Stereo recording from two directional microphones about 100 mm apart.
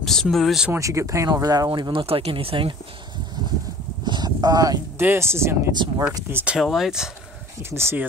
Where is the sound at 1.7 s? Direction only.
55° right (ahead or behind).